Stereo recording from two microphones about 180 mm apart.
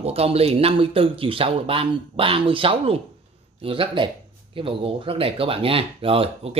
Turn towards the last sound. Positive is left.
turn(degrees=-35)  # may be behind; listen again after turning